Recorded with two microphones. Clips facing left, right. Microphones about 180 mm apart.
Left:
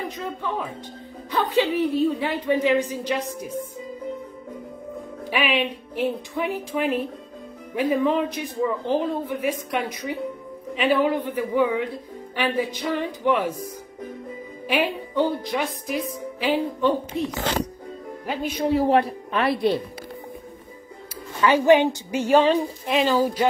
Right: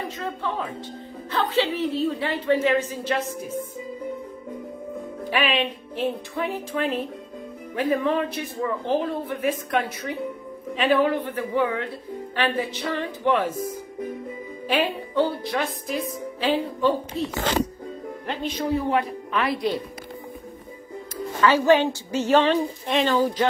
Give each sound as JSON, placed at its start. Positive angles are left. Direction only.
{"t": 1.3, "sound": "speech", "side_deg": 15}
{"t": 5.3, "sound": "speech", "side_deg": 10}
{"t": 14.7, "sound": "speech", "side_deg": 15}
{"t": 18.7, "sound": "a woman's voice", "side_deg": 30}
{"t": 21.4, "sound": "speech", "side_deg": 15}